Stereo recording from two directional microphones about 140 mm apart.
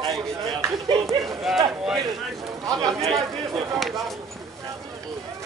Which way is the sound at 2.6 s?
30° right (ahead or behind).